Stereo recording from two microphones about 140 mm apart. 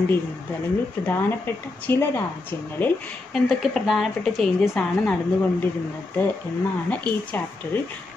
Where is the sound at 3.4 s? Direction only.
Centre (ahead or behind).